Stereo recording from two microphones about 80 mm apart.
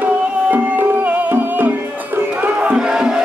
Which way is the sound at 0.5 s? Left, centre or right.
Right.